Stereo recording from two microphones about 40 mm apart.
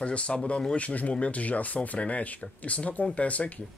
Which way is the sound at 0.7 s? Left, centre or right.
Left.